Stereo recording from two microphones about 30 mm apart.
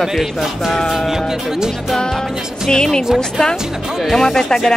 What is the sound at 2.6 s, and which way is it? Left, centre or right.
Speech, left.